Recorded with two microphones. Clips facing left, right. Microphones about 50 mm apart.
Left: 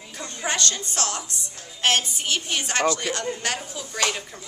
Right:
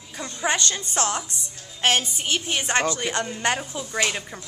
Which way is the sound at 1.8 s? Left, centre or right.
Centre.